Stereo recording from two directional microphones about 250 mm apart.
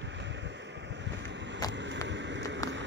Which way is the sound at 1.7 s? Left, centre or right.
Right.